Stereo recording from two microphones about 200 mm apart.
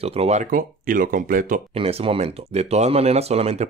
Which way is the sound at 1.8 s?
30° right (ahead or behind).